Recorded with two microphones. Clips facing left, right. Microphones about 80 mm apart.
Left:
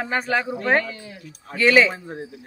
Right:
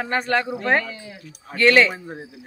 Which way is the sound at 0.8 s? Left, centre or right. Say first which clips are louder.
Left 1 dB; right.